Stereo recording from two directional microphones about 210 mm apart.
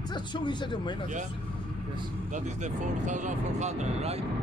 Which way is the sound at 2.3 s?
35° right (ahead or behind).